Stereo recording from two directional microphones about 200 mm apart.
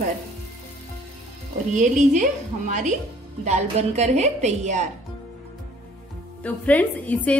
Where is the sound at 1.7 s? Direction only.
40° right (ahead or behind).